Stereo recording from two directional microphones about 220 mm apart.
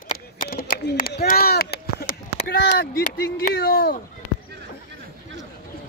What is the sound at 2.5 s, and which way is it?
Speech, 50° left (ahead or behind).